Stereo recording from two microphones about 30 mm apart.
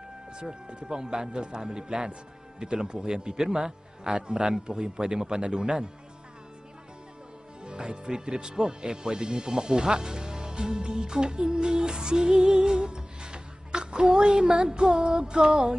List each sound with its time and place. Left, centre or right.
0.7 s speech: right
3.3 s speech: centre
7.6 s speech: right
12.3 s music: right